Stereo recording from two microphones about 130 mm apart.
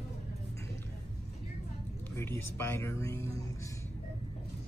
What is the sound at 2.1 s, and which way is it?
Speech, 20° left (ahead or behind).